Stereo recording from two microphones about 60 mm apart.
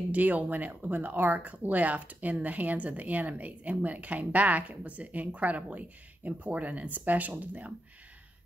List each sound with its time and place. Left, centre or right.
0.1 s speech: right